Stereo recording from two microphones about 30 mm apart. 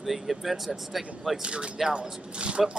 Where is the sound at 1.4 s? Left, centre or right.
Right.